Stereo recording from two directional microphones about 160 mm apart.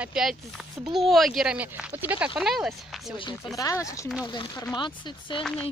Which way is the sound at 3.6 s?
20° left (ahead or behind).